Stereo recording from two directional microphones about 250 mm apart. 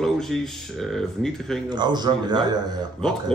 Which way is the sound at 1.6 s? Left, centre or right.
Centre.